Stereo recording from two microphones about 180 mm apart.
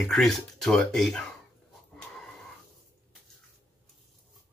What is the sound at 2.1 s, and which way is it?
Wheeze, 5° left (ahead or behind).